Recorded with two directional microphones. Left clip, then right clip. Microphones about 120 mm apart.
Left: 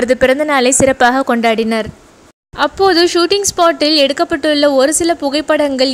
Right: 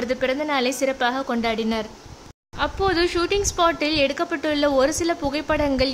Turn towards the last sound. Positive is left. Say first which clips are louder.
# left 9 dB
turn(degrees=25)  # may be behind; listen again after turning